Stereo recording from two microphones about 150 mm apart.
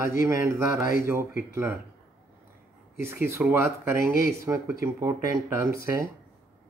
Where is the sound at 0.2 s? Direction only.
20° right (ahead or behind).